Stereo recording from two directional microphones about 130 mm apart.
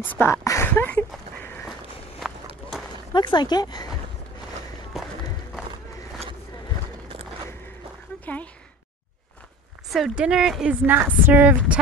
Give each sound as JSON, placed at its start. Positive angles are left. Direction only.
{"t": 0.0, "sound": "speech", "side_deg": 15}
{"t": 0.7, "sound": "a sound", "side_deg": 15}
{"t": 2.2, "sound": "run", "side_deg": 0}
{"t": 3.1, "sound": "speech", "side_deg": 35}
{"t": 8.3, "sound": "speech", "side_deg": 15}
{"t": 9.8, "sound": "a woman's voice", "side_deg": 0}